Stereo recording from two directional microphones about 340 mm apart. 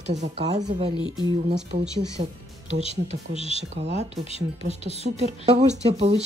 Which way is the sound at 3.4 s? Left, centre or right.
Centre.